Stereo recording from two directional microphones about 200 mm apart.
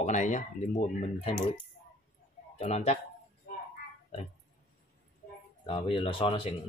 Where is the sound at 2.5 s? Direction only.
30° left (ahead or behind).